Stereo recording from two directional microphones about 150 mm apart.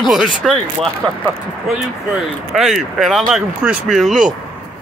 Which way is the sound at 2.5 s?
Centre (ahead or behind).